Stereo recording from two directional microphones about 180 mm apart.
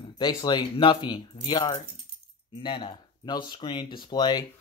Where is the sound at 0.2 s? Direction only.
25° left (ahead or behind).